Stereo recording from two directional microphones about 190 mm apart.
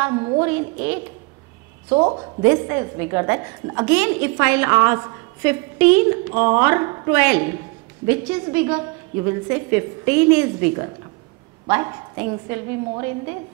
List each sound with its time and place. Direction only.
0.0 s a woman's voice: 20° right (ahead or behind)
1.9 s a woman's voice: 25° right (ahead or behind)
2.4 s a woman's voice: 15° right (ahead or behind)